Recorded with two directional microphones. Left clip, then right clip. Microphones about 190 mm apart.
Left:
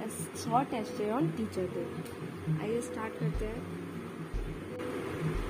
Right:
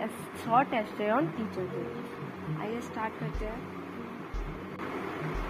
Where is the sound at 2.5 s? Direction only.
20° left (ahead or behind).